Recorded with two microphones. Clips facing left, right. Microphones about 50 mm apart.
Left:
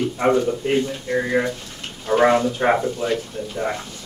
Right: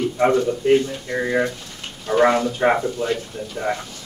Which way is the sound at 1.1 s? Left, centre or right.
Centre.